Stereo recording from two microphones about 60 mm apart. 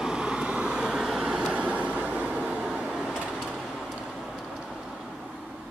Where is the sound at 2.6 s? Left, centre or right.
Centre.